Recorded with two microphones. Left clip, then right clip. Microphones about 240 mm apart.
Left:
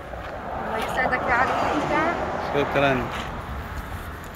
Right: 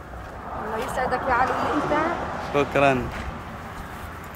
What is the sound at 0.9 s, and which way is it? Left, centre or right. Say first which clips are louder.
Speech: left 1 dB; right.